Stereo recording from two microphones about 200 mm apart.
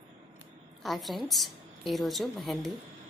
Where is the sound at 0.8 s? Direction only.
Centre (ahead or behind).